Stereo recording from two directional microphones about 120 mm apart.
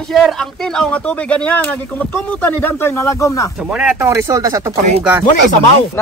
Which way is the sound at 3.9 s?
25° right (ahead or behind).